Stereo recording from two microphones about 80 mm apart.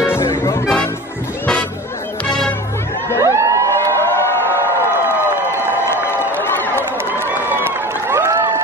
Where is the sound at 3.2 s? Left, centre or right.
Right.